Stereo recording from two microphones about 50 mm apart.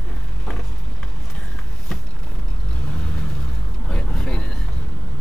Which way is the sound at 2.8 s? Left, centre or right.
Centre.